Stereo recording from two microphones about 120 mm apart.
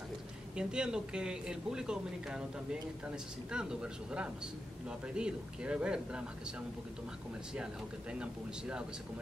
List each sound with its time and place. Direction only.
0.6 s speech: 5° right (ahead or behind)
7.5 s speech: 10° right (ahead or behind)